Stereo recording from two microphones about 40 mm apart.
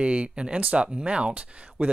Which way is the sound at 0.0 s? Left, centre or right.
Right.